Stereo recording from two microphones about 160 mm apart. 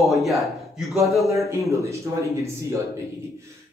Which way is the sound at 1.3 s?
20° right (ahead or behind).